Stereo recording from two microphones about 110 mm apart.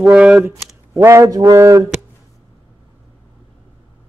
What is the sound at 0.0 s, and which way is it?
Speech, 5° right (ahead or behind).